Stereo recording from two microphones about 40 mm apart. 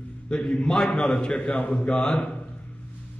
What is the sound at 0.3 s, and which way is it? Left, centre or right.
A man's voice, left.